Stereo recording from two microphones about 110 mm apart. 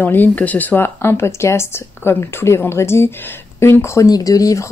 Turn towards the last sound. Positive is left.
turn(degrees=30)  # may be behind; listen again after turning